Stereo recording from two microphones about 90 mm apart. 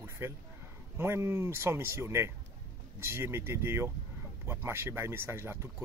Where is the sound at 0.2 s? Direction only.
25° right (ahead or behind).